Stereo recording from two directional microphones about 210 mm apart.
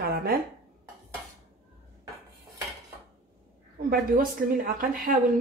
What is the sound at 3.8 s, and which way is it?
A woman's voice, 45° right (ahead or behind).